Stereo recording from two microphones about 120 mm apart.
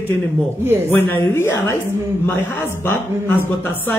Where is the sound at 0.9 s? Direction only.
15° left (ahead or behind).